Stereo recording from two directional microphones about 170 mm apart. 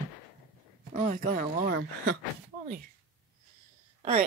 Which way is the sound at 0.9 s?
50° right (ahead or behind).